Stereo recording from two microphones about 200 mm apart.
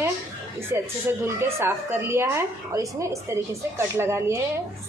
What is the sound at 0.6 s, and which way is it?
Speech, 10° right (ahead or behind).